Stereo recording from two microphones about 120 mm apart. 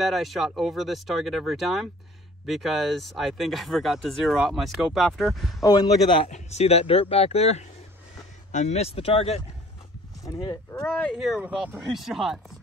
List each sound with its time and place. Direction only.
0.0 s speech: centre (ahead or behind)
5.6 s speech: 40° left (ahead or behind)
6.2 s speech: 65° left (ahead or behind)
8.5 s speech: 75° left (ahead or behind); by 9.4 s 55° left (ahead or behind)
10.2 s speech: 35° left (ahead or behind)
11.1 s speech: centre (ahead or behind)
11.4 s speech: 15° right (ahead or behind)
11.8 s speech: centre (ahead or behind)